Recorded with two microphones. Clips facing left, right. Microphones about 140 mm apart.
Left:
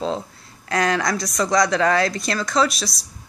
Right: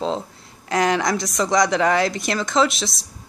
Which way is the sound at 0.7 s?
20° right (ahead or behind).